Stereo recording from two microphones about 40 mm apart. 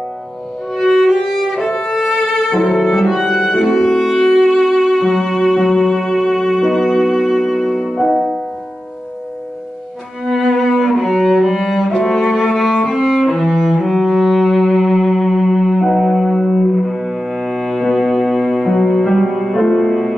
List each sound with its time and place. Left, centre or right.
0.7 s music: centre
1.7 s violin: centre
2.0 s music: centre
10.2 s cello: centre
17.7 s music: centre